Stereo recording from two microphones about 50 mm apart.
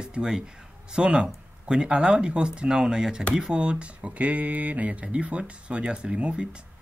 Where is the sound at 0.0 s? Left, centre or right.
Centre.